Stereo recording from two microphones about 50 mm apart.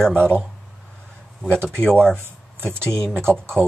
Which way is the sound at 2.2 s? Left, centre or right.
Right.